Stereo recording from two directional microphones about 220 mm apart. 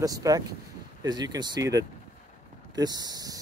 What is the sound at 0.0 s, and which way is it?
Speech, 15° right (ahead or behind).